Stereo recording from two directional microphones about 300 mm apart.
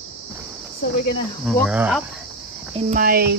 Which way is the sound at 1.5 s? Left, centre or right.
Centre.